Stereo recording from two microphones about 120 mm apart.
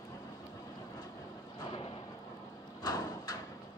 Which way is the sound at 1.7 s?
50° left (ahead or behind).